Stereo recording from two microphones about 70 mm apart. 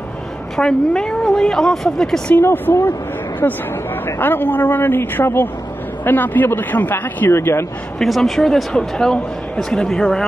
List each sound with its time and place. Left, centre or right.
0.6 s a man's voice: centre
2.4 s a man's voice: left
4.2 s a man's voice: left
7.2 s speech: left
8.0 s a man's voice: centre